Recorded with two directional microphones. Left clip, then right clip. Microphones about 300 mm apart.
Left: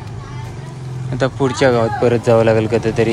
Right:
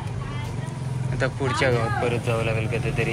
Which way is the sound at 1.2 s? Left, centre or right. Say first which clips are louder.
Left 8 dB; centre.